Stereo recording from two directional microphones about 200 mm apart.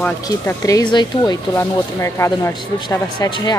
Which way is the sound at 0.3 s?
15° left (ahead or behind).